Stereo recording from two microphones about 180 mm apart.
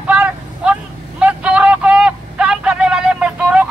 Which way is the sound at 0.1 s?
10° right (ahead or behind).